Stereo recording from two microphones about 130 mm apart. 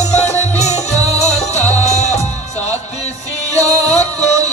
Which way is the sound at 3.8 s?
55° left (ahead or behind).